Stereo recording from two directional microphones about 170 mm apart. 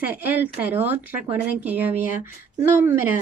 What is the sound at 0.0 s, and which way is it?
A woman's voice, 10° right (ahead or behind).